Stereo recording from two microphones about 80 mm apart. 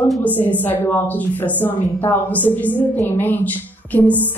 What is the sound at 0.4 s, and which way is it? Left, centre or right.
A woman's voice, left.